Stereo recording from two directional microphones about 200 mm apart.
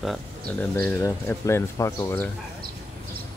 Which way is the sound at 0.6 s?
10° left (ahead or behind).